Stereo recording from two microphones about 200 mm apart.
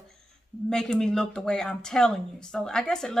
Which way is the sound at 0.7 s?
5° left (ahead or behind).